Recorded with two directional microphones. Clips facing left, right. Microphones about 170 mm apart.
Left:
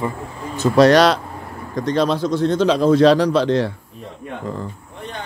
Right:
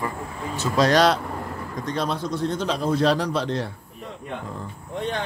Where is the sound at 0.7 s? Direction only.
70° left (ahead or behind).